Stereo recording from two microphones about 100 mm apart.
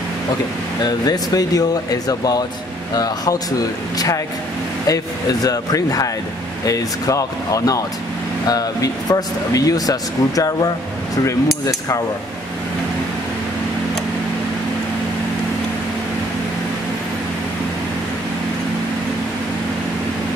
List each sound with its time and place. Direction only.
0.8 s speech: 40° left (ahead or behind)